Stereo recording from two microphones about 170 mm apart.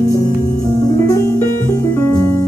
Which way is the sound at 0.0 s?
20° left (ahead or behind).